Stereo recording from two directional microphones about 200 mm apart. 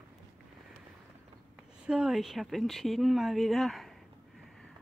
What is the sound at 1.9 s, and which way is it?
Speech, centre (ahead or behind).